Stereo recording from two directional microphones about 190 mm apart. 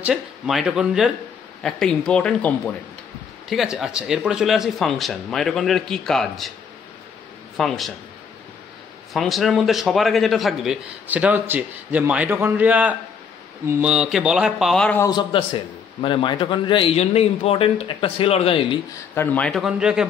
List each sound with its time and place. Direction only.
0.0 s a man's voice: 5° right (ahead or behind)
7.5 s a man's voice: centre (ahead or behind)
9.1 s a man's voice: centre (ahead or behind)
15.0 s a man's voice: 25° left (ahead or behind)
19.1 s a man's voice: 10° left (ahead or behind)